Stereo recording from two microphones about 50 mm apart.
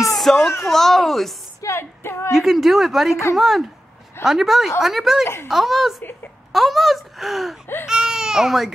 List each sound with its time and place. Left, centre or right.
0.0 s music: centre
0.7 s speech: centre
1.6 s female singing: left
2.3 s speech: centre
5.2 s a woman's voice: left
5.5 s speech: centre